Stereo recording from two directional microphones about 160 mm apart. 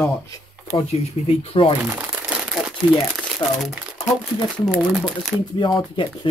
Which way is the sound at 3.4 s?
30° left (ahead or behind).